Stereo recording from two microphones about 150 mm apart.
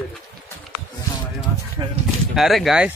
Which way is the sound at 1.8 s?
25° right (ahead or behind).